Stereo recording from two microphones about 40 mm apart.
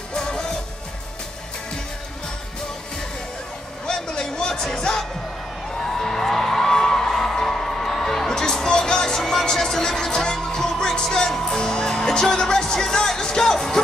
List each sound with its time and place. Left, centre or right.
0.1 s music: centre
3.8 s a sound: centre
4.7 s music: centre